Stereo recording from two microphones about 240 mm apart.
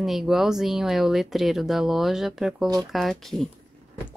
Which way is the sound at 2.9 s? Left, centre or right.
Centre.